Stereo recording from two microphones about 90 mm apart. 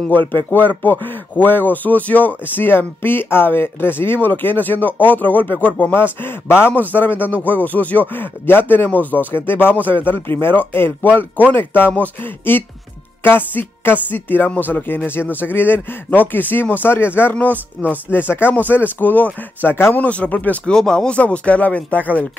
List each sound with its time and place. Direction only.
0.7 s speech: 20° left (ahead or behind)